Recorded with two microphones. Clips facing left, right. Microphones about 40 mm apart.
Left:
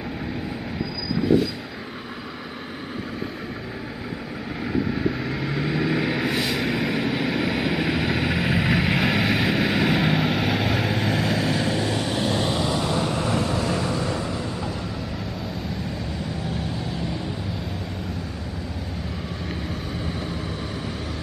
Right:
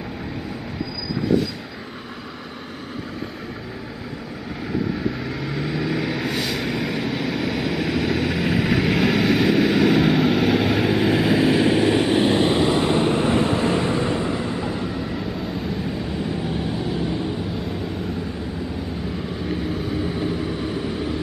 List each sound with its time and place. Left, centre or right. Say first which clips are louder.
4.7 s vehicle: even; centre
16.4 s vehicle: right 4 dB; centre
19.7 s vehicle: right 5 dB; centre